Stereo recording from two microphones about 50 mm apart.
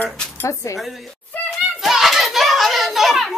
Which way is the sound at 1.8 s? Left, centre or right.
Centre.